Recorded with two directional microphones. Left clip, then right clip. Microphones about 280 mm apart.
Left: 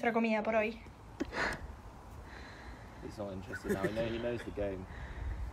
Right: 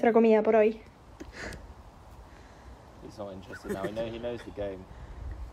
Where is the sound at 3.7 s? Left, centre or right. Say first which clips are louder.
Right 1 dB; centre.